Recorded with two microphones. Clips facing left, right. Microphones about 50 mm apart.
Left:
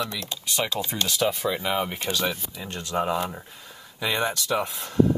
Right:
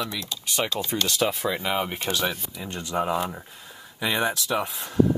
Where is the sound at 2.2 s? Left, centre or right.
Centre.